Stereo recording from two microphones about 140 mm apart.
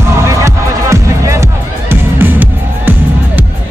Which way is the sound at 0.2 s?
20° right (ahead or behind).